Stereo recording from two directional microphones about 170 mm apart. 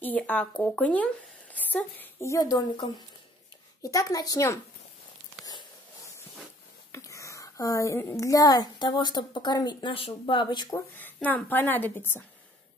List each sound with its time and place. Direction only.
0.0 s a woman's voice: 10° left (ahead or behind)
5.4 s a sound: 25° left (ahead or behind)
6.9 s a woman's voice: 20° left (ahead or behind)
10.7 s a woman's voice: 10° left (ahead or behind)